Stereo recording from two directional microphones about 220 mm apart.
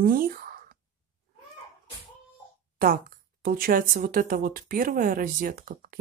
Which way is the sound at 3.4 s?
40° right (ahead or behind).